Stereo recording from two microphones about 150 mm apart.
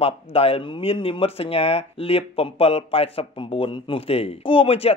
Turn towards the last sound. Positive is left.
turn(degrees=40)  # may be behind; listen again after turning